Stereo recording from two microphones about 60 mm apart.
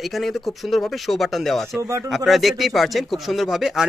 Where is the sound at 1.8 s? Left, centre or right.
Right.